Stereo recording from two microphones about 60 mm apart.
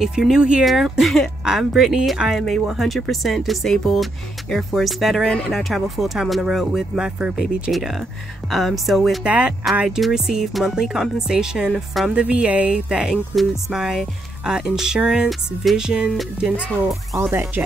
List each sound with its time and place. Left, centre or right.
0.0 s speech: centre
0.7 s speech: centre
7.2 s speech: centre
8.5 s speech: centre
9.2 s speech: centre
9.8 s speech: centre
17.2 s speech: right